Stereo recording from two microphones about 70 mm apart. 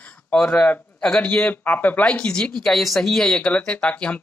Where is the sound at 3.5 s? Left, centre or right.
Centre.